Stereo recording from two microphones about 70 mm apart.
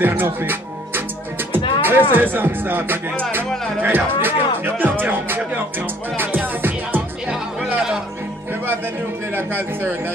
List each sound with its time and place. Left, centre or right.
0.0 s music: right
2.3 s speech: right
3.8 s music: right
7.2 s music: centre
9.3 s a man's voice: right